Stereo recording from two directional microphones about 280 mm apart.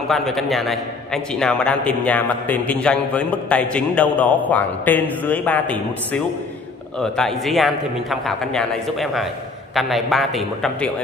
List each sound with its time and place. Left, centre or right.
0.1 s a man's voice: centre